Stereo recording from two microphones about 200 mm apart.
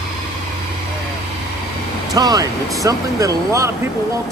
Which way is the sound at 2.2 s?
20° right (ahead or behind).